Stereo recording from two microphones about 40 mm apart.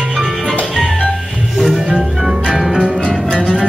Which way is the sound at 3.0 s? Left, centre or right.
Left.